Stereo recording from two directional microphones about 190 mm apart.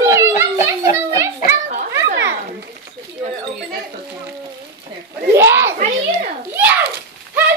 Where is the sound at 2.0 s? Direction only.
65° right (ahead or behind).